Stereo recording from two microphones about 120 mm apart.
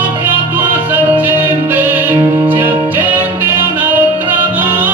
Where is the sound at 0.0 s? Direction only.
15° right (ahead or behind).